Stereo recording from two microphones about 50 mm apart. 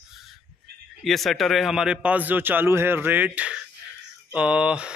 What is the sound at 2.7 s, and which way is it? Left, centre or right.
A man's voice, right.